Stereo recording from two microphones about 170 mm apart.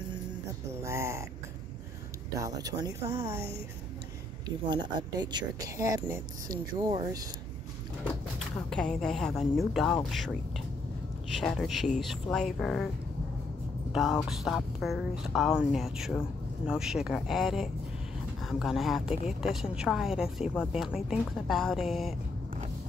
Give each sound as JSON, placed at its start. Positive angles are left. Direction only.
{"t": 0.8, "sound": "speech", "side_deg": -15}
{"t": 2.3, "sound": "speech", "side_deg": -20}
{"t": 4.5, "sound": "speech", "side_deg": -25}
{"t": 8.5, "sound": "a woman's voice", "side_deg": 5}
{"t": 11.4, "sound": "a woman's voice", "side_deg": 0}
{"t": 13.9, "sound": "a woman's voice", "side_deg": 0}